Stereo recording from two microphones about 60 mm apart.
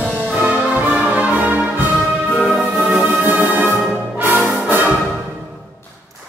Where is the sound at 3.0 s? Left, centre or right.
Right.